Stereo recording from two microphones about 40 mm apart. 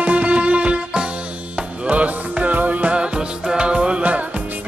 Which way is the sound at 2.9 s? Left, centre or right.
Right.